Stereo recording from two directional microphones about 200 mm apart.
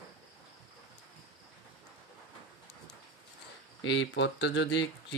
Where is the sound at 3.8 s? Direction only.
65° left (ahead or behind).